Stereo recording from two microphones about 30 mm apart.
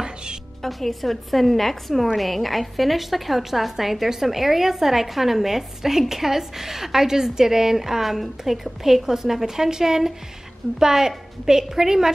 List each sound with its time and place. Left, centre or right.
0.6 s a woman's voice: centre